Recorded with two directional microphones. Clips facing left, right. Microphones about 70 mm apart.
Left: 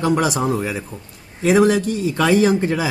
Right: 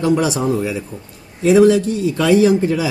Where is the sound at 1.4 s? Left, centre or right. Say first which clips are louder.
Right 4 dB; left.